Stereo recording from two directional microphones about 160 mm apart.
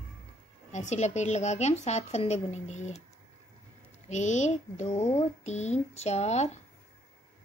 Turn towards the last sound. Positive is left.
turn(degrees=45)  # may be behind; listen again after turning